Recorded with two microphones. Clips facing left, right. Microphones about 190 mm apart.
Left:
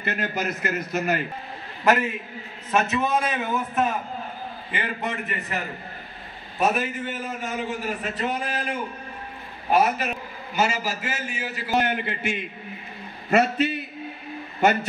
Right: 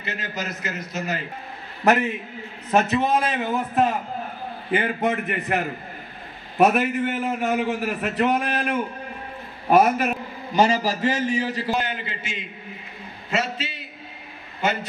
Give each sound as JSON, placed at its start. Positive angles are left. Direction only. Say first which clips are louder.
{"t": 0.0, "sound": "a man's voice", "louder": "left 4 dB", "side_deg": 55}
{"t": 2.7, "sound": "a man's voice", "louder": "right 3 dB", "side_deg": -35}
{"t": 4.6, "sound": "a man's voice", "louder": "right 8 dB", "side_deg": -50}
{"t": 6.6, "sound": "a man's voice", "louder": "right 5 dB", "side_deg": -65}
{"t": 10.5, "sound": "a man's voice", "louder": "right 5 dB", "side_deg": -35}
{"t": 11.7, "sound": "a man's voice", "louder": "left 3 dB", "side_deg": 60}